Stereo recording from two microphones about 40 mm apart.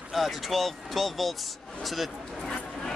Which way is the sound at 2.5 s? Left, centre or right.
Centre.